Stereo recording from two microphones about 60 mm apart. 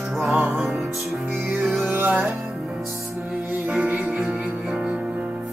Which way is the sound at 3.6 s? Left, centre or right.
Right.